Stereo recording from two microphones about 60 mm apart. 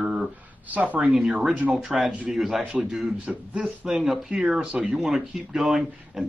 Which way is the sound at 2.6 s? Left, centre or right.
Centre.